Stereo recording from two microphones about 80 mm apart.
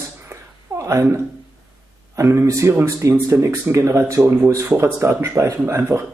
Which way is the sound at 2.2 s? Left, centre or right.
Right.